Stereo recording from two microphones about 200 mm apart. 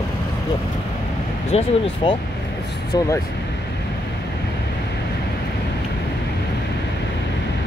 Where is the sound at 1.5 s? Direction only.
25° left (ahead or behind).